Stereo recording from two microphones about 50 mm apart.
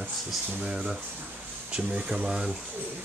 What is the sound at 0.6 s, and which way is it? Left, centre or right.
Speech, centre.